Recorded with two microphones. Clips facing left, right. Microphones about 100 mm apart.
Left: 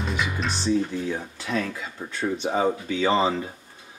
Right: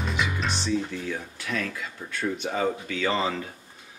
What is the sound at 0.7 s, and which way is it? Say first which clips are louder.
Speech: left 7 dB; 25° left (ahead or behind).